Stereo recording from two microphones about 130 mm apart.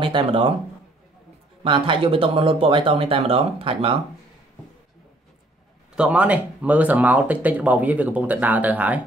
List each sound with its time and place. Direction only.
0.0 s speech: 45° right (ahead or behind)
1.6 s speech: 40° right (ahead or behind)
5.9 s speech: 10° right (ahead or behind)